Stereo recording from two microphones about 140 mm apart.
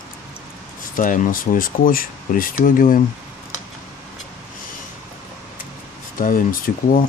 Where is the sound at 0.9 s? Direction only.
75° left (ahead or behind).